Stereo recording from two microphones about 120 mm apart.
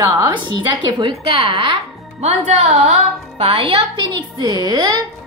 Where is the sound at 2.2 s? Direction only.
65° right (ahead or behind).